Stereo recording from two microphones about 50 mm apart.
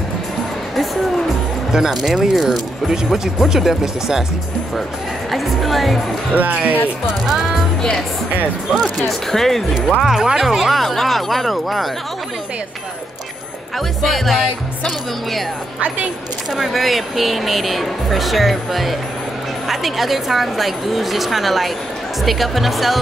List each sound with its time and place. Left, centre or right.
1.7 s speech: centre
5.3 s speech: centre
6.3 s speech: right
7.2 s speech: centre
8.7 s speech: centre
10.0 s speech: centre
10.4 s speech: centre
13.7 s speech: centre
16.5 s speech: centre